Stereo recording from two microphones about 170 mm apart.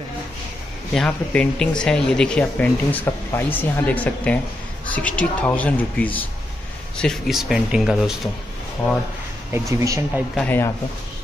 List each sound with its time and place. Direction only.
0.9 s speech: 5° left (ahead or behind)
9.5 s speech: 15° right (ahead or behind)
10.3 s speech: 10° left (ahead or behind)